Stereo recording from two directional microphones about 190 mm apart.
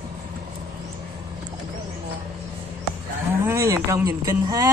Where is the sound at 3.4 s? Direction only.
15° right (ahead or behind).